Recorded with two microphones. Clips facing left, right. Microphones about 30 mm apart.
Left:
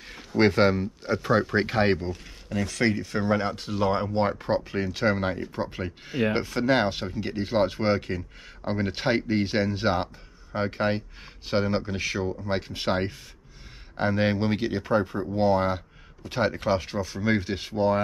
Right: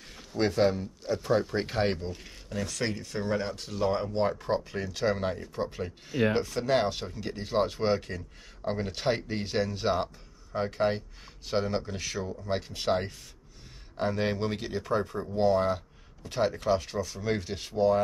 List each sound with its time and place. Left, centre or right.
0.0 s a sound: left
0.4 s speech: left
1.8 s speech: centre